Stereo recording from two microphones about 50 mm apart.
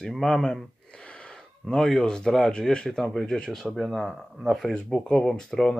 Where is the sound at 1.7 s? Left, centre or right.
Centre.